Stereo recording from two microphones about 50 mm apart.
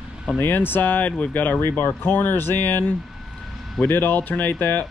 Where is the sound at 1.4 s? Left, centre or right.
Left.